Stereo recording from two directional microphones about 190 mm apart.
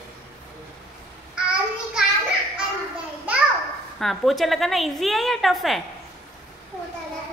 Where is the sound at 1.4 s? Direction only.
5° right (ahead or behind).